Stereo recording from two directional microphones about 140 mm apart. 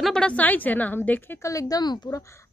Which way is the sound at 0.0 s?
5° left (ahead or behind).